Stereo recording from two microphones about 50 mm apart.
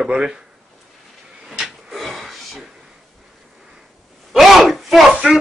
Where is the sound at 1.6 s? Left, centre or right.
Centre.